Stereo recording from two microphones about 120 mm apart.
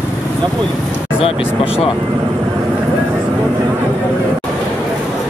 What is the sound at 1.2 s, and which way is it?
Speech, 50° left (ahead or behind).